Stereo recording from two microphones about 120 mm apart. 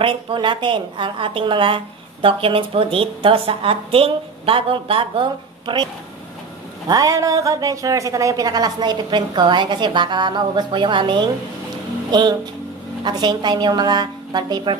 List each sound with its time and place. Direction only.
0.0 s a woman's voice: 45° right (ahead or behind)
6.9 s speech: 30° right (ahead or behind)